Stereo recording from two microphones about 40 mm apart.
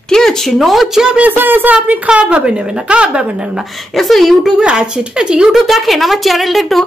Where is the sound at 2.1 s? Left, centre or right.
Right.